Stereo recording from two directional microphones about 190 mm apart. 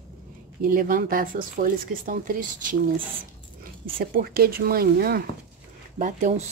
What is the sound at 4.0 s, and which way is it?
Speech, 55° right (ahead or behind).